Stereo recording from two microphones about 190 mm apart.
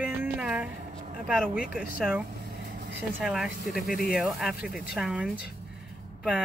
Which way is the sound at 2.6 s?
60° right (ahead or behind).